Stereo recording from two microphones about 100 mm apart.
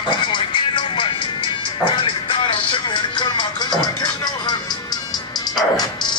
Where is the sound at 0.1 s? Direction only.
55° left (ahead or behind).